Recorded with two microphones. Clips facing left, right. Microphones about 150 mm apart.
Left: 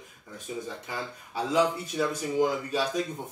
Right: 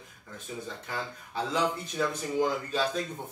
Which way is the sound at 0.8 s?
10° left (ahead or behind).